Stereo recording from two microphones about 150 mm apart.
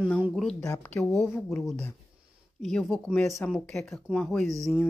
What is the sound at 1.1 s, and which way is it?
Speech, centre (ahead or behind).